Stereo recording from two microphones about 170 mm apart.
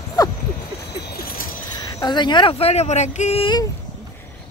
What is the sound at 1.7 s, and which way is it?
Speech, 25° left (ahead or behind).